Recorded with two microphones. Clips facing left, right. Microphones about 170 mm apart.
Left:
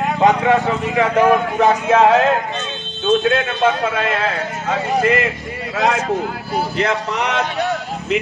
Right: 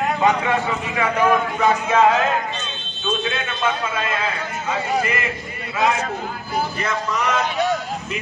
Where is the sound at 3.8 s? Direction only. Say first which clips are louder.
Left 5 dB; 75° left (ahead or behind).